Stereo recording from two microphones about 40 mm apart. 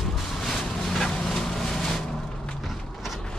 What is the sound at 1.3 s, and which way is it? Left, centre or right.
Vehicle, centre.